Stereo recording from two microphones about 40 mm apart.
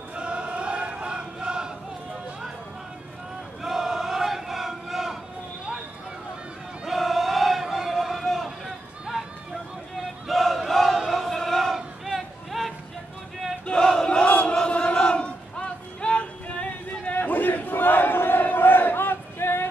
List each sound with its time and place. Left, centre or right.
0.1 s chant: right
3.6 s chant: centre
6.9 s chant: centre
7.6 s a sound: centre
10.2 s battle cry: centre
11.1 s a sound: centre
13.7 s battle cry: centre
14.8 s a sound: left
17.1 s battle cry: left